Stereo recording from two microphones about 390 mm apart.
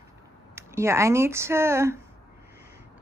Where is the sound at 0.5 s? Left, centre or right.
Centre.